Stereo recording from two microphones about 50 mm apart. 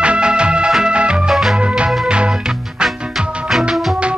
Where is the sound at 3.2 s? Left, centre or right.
Centre.